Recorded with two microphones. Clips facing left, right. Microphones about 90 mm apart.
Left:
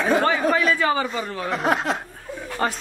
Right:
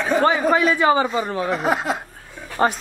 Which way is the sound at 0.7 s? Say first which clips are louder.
Right 5 dB; 20° right (ahead or behind).